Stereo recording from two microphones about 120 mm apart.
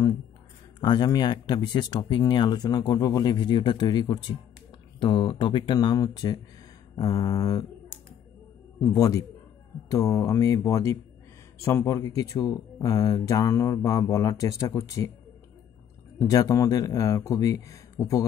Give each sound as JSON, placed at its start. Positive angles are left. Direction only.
{"t": 0.7, "sound": "speech", "side_deg": 35}
{"t": 8.8, "sound": "speech", "side_deg": 30}
{"t": 16.2, "sound": "speech", "side_deg": 30}